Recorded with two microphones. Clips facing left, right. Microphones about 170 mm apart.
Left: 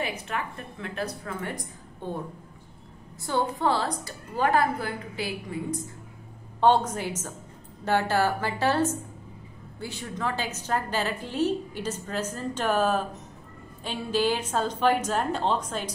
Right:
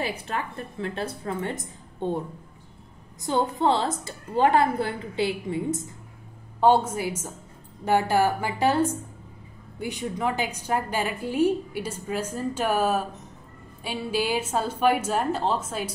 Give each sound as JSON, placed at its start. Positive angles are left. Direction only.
{"t": 0.0, "sound": "a woman's voice", "side_deg": -30}
{"t": 6.6, "sound": "a woman's voice", "side_deg": -10}